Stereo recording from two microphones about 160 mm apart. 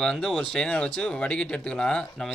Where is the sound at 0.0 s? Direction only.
Centre (ahead or behind).